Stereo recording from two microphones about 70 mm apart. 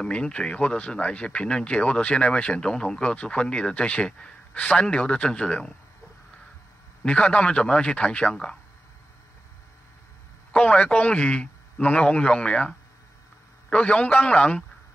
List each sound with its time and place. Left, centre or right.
0.0 s speech: centre
7.0 s speech: centre
10.5 s a man's voice: centre